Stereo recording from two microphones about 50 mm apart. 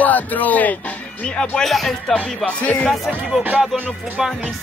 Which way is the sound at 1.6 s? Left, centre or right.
Centre.